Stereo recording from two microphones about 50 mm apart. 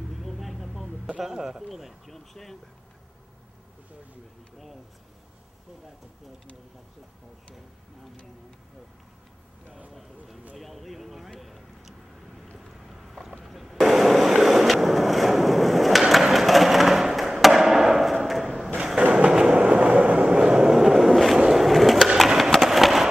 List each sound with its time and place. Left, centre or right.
0.1 s vehicle: centre
1.2 s a man's voice: centre
9.9 s speech: centre
10.5 s vehicle: centre
12.5 s a sound: centre
19.1 s train: centre
21.5 s skateboard: centre